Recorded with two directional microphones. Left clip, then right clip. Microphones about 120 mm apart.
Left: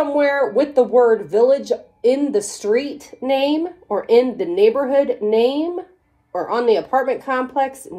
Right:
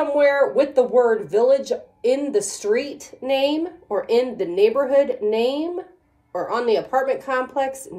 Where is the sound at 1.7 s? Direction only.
25° left (ahead or behind).